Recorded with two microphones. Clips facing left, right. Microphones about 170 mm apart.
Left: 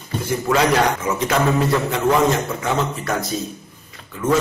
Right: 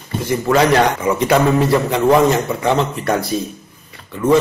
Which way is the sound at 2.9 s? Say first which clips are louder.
Right 5 dB; 65° right (ahead or behind).